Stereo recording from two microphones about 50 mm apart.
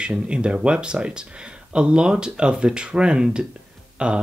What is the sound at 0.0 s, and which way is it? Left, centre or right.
Speech, centre.